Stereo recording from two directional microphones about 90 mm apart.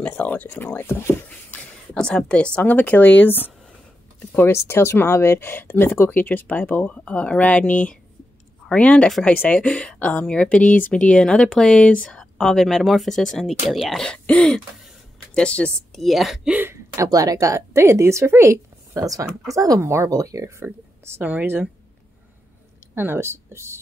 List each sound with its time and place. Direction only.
0.0 s speech: 15° left (ahead or behind)
2.0 s a woman's voice: 10° left (ahead or behind)
16.0 s speech: centre (ahead or behind)
16.4 s speech: 20° right (ahead or behind)
16.7 s a woman's voice: 35° right (ahead or behind)
21.2 s speech: 15° right (ahead or behind)
22.9 s speech: 25° right (ahead or behind)